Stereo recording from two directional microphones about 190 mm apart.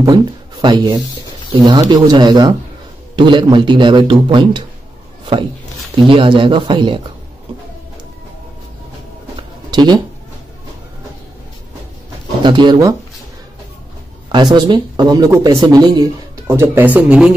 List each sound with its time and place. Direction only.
0.0 s speech: 20° right (ahead or behind)
6.0 s speech: 25° right (ahead or behind)
9.7 s a sound: 20° right (ahead or behind)
12.4 s speech: 25° right (ahead or behind)
14.3 s speech: 25° right (ahead or behind); by 17.3 s 5° right (ahead or behind)